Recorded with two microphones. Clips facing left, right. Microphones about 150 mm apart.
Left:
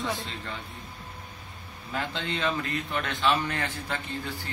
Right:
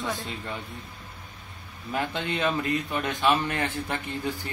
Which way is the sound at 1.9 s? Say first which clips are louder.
Right 3 dB; 15° right (ahead or behind).